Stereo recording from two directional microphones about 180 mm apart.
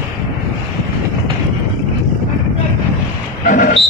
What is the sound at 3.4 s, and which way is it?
Vehicle, 55° left (ahead or behind).